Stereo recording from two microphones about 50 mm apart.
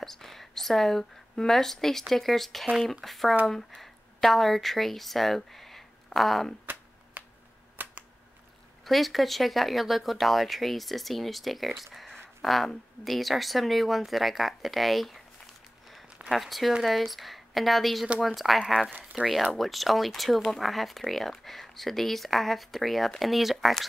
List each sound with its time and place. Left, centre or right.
0.0 s speech: centre
6.6 s finger snapping: right
7.7 s camera: right
8.8 s speech: centre
16.3 s speech: centre